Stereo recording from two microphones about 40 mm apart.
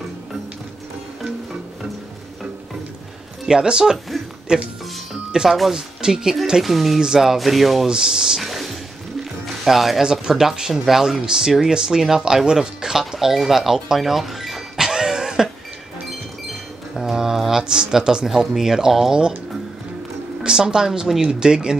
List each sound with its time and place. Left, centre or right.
3.4 s speech: centre
6.6 s speech: centre
7.9 s speech: centre
8.5 s music: centre
9.7 s speech: centre
13.8 s a sound: centre
14.9 s cough: centre
16.9 s speech: centre
20.4 s speech: centre